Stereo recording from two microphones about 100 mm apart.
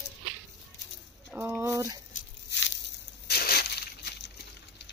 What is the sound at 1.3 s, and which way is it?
Speech, 25° right (ahead or behind).